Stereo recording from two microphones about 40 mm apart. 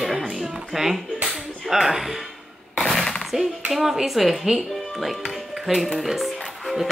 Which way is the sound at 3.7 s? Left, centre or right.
Centre.